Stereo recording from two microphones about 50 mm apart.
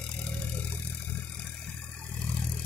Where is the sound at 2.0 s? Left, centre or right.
Left.